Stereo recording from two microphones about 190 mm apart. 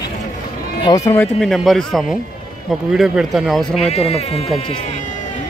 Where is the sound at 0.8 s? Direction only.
20° left (ahead or behind).